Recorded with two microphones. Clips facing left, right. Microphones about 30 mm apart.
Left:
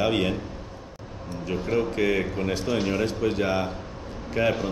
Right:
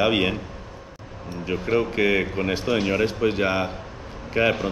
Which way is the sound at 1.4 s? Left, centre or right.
Right.